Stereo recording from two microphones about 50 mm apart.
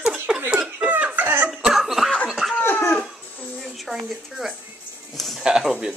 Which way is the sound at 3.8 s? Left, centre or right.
Centre.